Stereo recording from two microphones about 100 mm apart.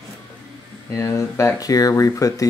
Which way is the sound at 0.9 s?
30° left (ahead or behind).